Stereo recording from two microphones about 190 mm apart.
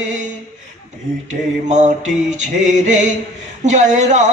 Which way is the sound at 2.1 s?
40° right (ahead or behind).